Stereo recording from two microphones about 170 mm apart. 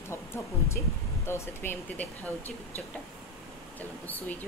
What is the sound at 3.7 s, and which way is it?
Speech, 10° left (ahead or behind).